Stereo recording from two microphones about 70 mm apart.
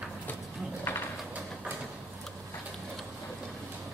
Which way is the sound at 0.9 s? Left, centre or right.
Left.